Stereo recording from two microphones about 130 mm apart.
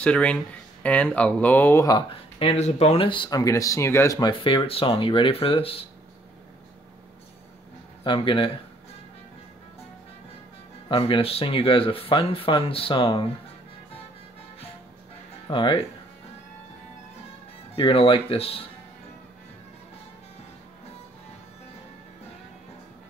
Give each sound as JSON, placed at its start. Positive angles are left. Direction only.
{"t": 0.0, "sound": "speech", "side_deg": 10}
{"t": 1.9, "sound": "speech", "side_deg": 40}
{"t": 3.1, "sound": "speech", "side_deg": 35}
{"t": 4.2, "sound": "speech", "side_deg": 40}
{"t": 8.0, "sound": "speech", "side_deg": 40}
{"t": 10.9, "sound": "speech", "side_deg": 45}
{"t": 15.5, "sound": "speech", "side_deg": 40}
{"t": 17.7, "sound": "speech", "side_deg": 45}